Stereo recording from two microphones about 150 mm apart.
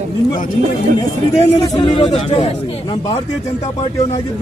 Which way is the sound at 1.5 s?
30° left (ahead or behind).